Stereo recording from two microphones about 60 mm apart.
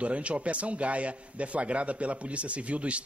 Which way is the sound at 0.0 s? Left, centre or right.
Right.